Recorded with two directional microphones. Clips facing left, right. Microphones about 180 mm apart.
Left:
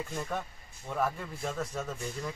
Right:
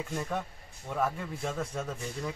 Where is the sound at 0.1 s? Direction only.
Centre (ahead or behind).